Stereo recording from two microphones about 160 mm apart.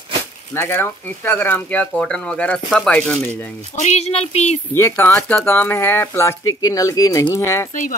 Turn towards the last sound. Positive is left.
turn(degrees=15)  # may be behind; listen again after turning